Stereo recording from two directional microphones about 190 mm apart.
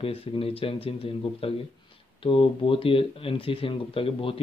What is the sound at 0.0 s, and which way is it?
Speech, 30° left (ahead or behind).